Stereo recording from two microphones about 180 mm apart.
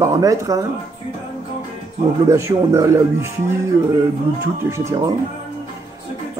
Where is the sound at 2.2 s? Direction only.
15° right (ahead or behind).